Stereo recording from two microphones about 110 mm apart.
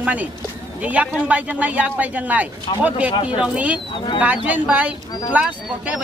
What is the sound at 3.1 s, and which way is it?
Speech, 50° left (ahead or behind).